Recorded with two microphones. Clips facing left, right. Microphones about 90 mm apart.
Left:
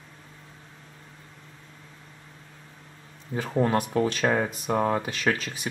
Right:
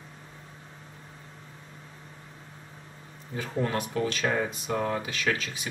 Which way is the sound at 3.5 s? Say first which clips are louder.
Left 5 dB; 30° left (ahead or behind).